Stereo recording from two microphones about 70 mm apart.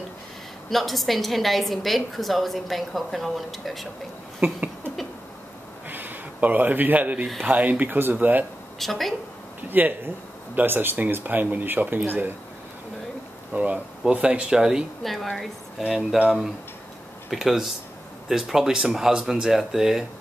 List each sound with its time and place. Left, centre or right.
0.7 s a woman's voice: centre
4.4 s a sound: right
7.4 s speech: right
8.7 s a woman's voice: centre
9.6 s speech: right
13.5 s speech: centre
15.0 s a woman's voice: centre
17.3 s a woman's voice: centre